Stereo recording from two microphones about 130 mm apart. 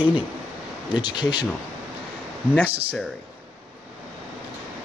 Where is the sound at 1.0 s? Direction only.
35° left (ahead or behind).